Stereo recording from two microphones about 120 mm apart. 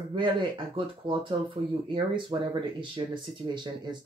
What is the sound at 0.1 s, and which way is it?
Speech, 45° right (ahead or behind).